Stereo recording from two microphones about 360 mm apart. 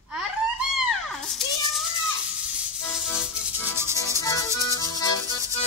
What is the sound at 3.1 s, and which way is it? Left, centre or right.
Music, centre.